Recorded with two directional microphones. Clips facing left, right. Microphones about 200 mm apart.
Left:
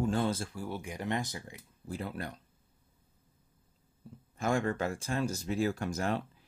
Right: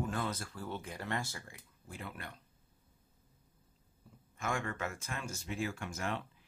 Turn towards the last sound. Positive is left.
turn(degrees=35)  # may be behind; listen again after turning